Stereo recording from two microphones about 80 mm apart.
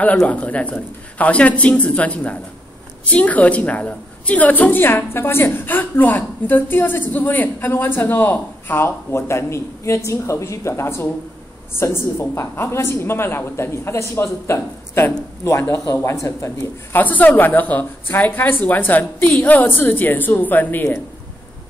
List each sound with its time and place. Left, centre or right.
0.3 s a woman's voice: centre
15.7 s a woman's voice: left
17.0 s a woman's voice: left